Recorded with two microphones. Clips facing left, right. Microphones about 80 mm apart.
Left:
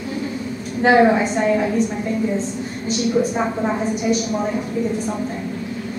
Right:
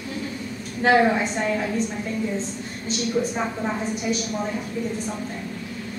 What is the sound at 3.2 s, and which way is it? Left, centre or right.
Speech, centre.